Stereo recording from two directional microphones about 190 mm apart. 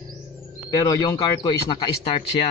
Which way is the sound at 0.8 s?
15° left (ahead or behind).